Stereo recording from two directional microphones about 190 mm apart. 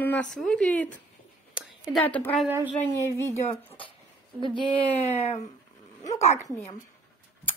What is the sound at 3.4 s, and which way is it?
Speech, 30° left (ahead or behind).